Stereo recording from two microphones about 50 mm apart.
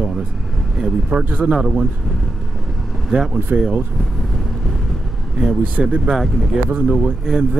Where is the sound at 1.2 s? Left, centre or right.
Right.